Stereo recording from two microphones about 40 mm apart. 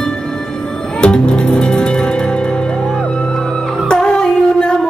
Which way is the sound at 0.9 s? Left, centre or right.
Left.